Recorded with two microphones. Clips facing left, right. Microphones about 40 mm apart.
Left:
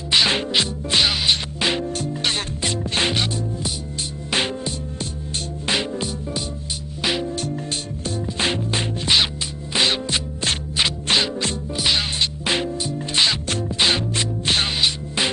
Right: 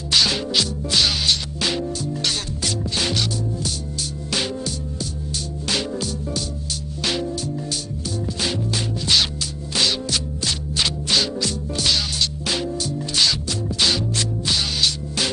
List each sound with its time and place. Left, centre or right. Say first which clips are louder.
0.1 s music: left 1 dB; left
8.4 s music: left 3 dB; left
11.7 s music: left 1 dB; left